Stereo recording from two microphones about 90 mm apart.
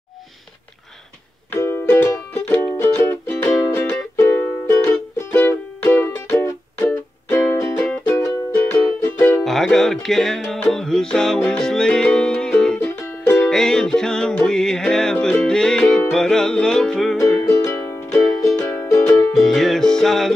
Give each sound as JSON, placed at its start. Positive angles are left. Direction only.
{"t": 1.5, "sound": "music", "side_deg": 25}
{"t": 7.8, "sound": "music", "side_deg": 15}
{"t": 9.0, "sound": "music", "side_deg": 25}
{"t": 9.4, "sound": "music", "side_deg": 5}
{"t": 12.8, "sound": "music", "side_deg": 20}
{"t": 13.5, "sound": "music", "side_deg": 5}
{"t": 17.5, "sound": "music", "side_deg": 35}
{"t": 18.6, "sound": "music", "side_deg": 20}
{"t": 19.0, "sound": "music", "side_deg": 5}